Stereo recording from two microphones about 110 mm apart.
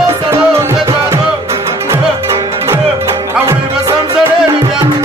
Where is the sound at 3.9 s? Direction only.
40° right (ahead or behind).